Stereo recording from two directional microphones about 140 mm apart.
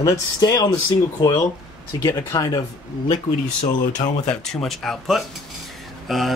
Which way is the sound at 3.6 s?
60° left (ahead or behind).